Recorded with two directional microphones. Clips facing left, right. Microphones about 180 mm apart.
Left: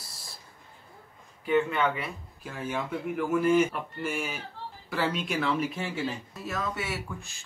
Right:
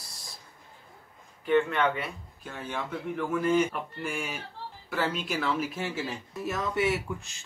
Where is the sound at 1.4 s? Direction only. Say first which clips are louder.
Right 1 dB; 5° left (ahead or behind).